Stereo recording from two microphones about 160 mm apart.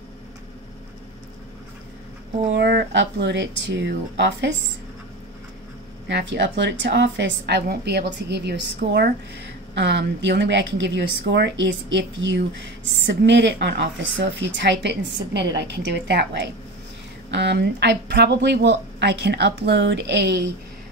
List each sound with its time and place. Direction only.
2.5 s speech: 85° right
6.0 s speech: 90° right